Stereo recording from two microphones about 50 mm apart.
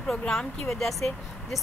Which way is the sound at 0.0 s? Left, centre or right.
Centre.